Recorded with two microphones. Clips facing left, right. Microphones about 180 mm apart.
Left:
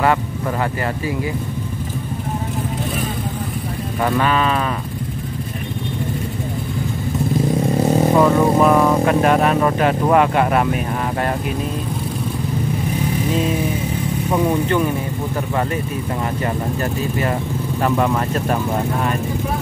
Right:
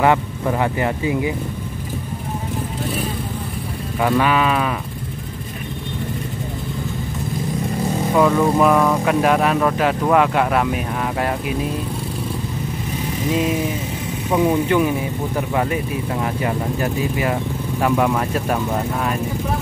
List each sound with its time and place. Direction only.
0.0 s vehicle: 15° right (ahead or behind)
4.0 s speech: 10° right (ahead or behind)
8.2 s speech: centre (ahead or behind)
14.3 s speech: 5° right (ahead or behind)